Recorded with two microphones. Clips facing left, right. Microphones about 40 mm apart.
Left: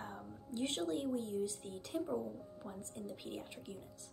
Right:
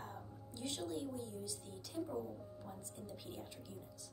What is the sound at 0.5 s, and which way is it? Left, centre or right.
A woman's voice, left.